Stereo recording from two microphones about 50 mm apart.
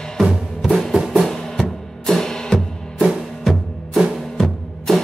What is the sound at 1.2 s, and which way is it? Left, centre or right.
Drum, centre.